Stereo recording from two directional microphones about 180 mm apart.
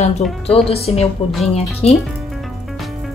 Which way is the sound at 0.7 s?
35° left (ahead or behind).